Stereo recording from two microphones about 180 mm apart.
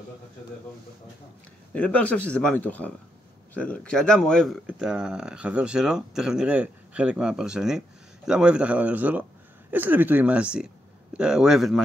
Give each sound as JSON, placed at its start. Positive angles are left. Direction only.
{"t": 1.7, "sound": "speech", "side_deg": 10}